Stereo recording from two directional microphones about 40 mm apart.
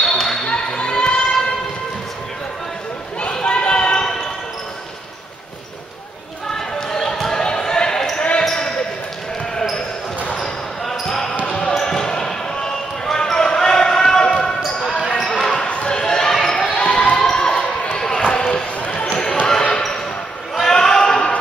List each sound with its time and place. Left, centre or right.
0.0 s music: centre
0.5 s a sound: left
3.2 s a sound: left
6.5 s basketball bounce: centre
8.2 s basketball bounce: left
8.5 s basketball bounce: centre
11.4 s basketball bounce: left
14.6 s basketball bounce: centre
15.6 s basketball bounce: left
16.7 s basketball bounce: left
17.9 s a sound: centre
18.8 s basketball bounce: left
20.5 s basketball bounce: centre